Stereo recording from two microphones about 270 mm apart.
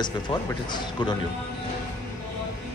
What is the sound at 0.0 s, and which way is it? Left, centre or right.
Speech, centre.